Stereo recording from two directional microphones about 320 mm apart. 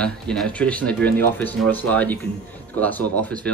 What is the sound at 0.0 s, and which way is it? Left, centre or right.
Speech, centre.